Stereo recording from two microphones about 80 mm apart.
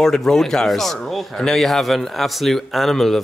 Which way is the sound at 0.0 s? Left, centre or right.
Centre.